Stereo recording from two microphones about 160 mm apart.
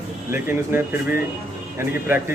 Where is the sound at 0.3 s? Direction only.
15° right (ahead or behind).